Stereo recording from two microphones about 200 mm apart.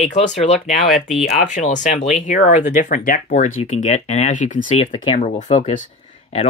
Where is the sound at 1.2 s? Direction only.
35° left (ahead or behind).